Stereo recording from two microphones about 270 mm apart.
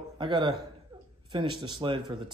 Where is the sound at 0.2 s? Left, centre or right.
Centre.